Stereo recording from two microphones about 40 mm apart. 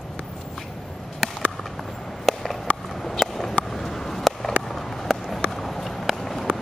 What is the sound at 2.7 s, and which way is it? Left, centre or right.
Clip-clop, left.